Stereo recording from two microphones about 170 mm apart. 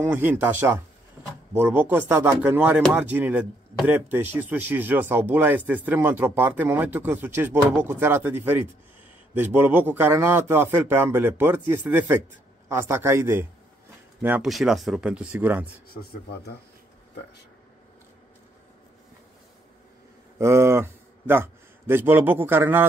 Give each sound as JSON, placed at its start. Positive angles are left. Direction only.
{"t": 0.0, "sound": "a man's voice", "side_deg": -10}
{"t": 16.0, "sound": "speech", "side_deg": 75}
{"t": 20.3, "sound": "a man's voice", "side_deg": -15}